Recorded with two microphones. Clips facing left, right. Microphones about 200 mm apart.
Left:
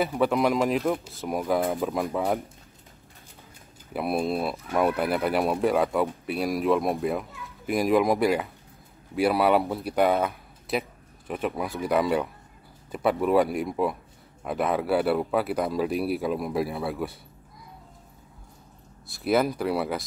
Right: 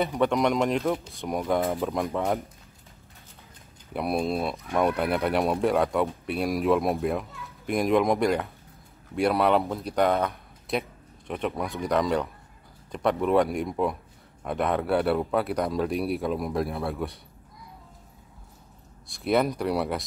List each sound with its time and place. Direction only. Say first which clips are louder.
0.0 s speech: even; 5° left (ahead or behind)
3.9 s speech: even; centre (ahead or behind)
19.0 s speech: even; 5° left (ahead or behind)